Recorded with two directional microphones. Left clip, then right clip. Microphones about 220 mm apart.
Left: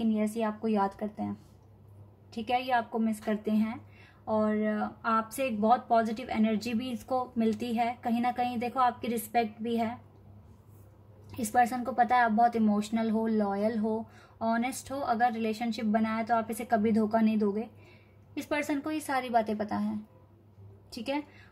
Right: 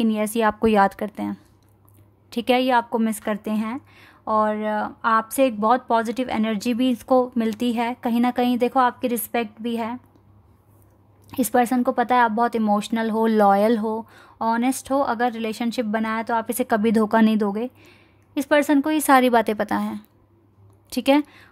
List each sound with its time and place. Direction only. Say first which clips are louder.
0.0 s a woman's voice: right 10 dB; 45° right (ahead or behind)
11.2 s a woman's voice: right 6 dB; 50° right (ahead or behind)